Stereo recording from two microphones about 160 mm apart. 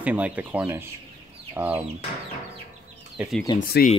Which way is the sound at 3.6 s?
70° left (ahead or behind).